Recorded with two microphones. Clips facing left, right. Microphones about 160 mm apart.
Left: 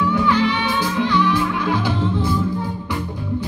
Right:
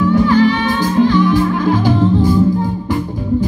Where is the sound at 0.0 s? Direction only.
40° right (ahead or behind).